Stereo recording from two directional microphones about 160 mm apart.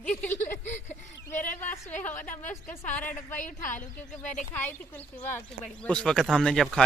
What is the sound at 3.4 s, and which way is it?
Speech, 55° left (ahead or behind).